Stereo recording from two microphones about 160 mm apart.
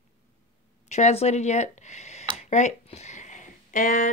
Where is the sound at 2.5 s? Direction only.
45° left (ahead or behind).